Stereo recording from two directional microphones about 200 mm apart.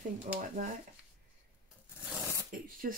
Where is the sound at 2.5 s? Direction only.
45° right (ahead or behind).